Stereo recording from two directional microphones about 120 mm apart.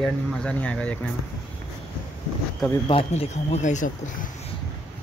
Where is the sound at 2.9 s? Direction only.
55° left (ahead or behind); by 3.9 s 90° left.